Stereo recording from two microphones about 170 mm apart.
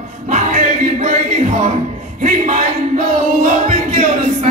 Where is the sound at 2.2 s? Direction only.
45° right (ahead or behind).